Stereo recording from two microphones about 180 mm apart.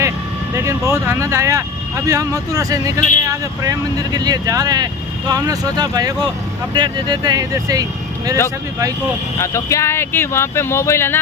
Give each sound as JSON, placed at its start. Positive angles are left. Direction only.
{"t": 0.6, "sound": "speech", "side_deg": -15}
{"t": 9.4, "sound": "speech", "side_deg": 15}